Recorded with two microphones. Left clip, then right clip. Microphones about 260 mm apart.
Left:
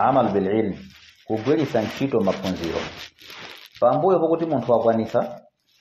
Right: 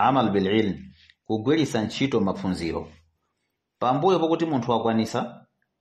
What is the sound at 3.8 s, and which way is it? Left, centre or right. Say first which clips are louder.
Speech: left 4 dB; right.